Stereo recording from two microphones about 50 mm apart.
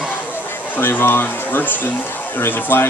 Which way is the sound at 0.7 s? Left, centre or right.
Left.